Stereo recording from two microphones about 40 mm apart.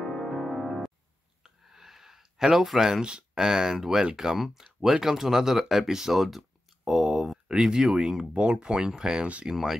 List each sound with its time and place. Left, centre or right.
0.0 s music: centre
1.4 s a sound: centre
3.0 s speech: right
3.3 s speech: centre
6.1 s a sound: centre
7.6 s speech: centre
8.3 s speech: right
9.5 s speech: centre